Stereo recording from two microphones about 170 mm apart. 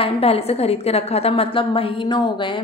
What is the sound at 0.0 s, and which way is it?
A woman's voice, 35° left (ahead or behind).